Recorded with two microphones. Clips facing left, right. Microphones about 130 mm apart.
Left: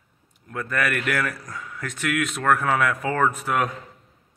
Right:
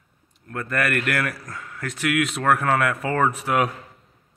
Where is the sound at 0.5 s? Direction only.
Centre (ahead or behind).